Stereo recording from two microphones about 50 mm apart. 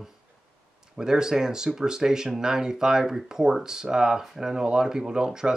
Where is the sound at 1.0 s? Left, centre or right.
Centre.